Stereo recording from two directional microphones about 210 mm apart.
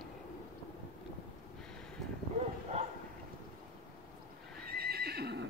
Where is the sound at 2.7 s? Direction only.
30° right (ahead or behind).